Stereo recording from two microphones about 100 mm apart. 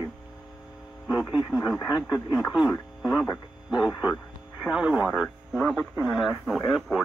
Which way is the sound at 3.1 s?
35° left (ahead or behind).